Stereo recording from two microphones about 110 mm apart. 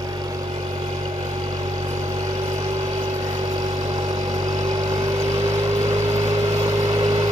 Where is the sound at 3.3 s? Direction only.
40° right (ahead or behind).